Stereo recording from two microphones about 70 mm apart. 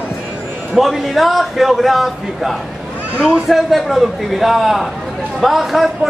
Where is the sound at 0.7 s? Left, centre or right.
Centre.